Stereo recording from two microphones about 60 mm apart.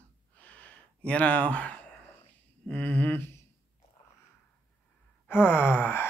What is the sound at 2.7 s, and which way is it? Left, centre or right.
Speech, left.